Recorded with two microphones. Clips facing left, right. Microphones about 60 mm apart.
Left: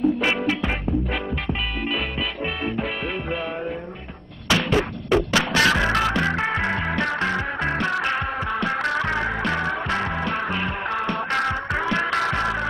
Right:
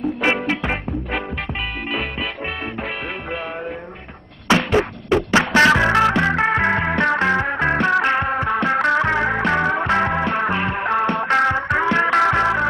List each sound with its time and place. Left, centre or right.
0.2 s music: right
4.5 s a sound: right
5.3 s music: right